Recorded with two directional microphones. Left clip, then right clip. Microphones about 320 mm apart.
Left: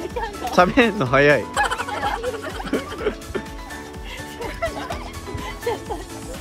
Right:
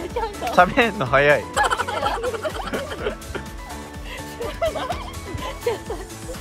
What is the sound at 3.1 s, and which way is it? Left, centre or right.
Music, centre.